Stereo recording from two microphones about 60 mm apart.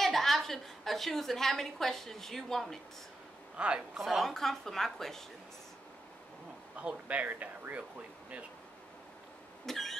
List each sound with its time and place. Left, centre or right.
0.0 s a woman's voice: centre
3.5 s a woman's voice: centre
3.9 s a woman's voice: centre
6.8 s speech: right
9.7 s vehicle: centre